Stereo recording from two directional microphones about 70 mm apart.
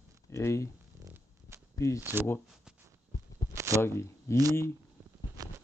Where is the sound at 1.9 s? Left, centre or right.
Right.